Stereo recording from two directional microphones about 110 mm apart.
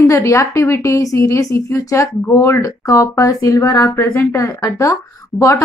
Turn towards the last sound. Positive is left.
turn(degrees=25)  # may be behind; listen again after turning